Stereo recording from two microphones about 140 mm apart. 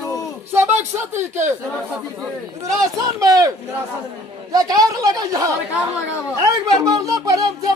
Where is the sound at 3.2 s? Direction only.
25° right (ahead or behind).